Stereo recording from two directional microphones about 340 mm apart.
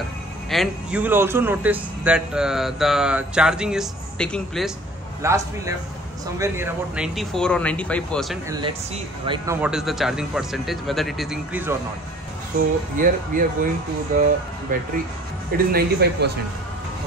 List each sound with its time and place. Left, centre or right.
0.5 s a man's voice: centre
8.5 s speech: centre
12.9 s speech: right
15.5 s speech: right